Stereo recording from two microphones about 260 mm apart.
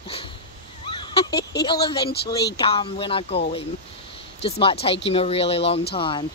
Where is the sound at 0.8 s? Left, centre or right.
Centre.